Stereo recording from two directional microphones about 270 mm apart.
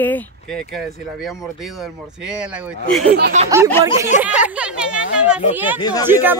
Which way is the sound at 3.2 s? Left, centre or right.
Right.